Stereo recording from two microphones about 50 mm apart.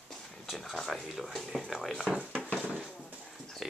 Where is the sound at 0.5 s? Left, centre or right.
Centre.